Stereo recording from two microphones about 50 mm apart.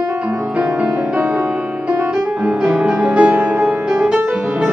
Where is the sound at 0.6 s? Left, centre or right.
Right.